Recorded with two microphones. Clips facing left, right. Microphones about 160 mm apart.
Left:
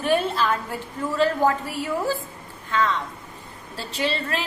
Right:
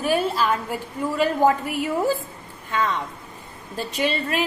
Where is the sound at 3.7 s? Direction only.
15° right (ahead or behind).